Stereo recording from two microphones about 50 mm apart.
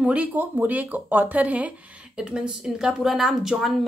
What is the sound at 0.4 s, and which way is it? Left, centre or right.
Speech, right.